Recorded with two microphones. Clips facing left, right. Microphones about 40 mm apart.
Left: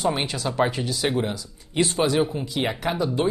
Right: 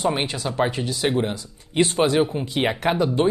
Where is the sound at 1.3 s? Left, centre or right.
Right.